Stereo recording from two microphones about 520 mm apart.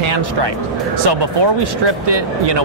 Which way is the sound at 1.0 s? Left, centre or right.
Right.